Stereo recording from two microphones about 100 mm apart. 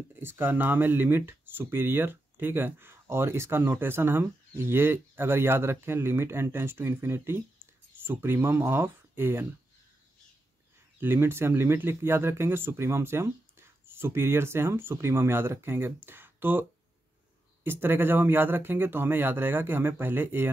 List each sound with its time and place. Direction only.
0.1 s speech: 20° right (ahead or behind)
11.0 s speech: 25° right (ahead or behind)
17.6 s speech: 20° right (ahead or behind)